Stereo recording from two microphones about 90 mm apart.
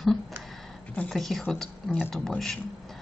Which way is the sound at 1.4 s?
15° left (ahead or behind).